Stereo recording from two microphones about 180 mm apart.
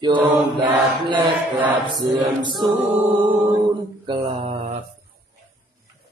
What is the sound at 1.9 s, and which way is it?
Mantra, 25° right (ahead or behind).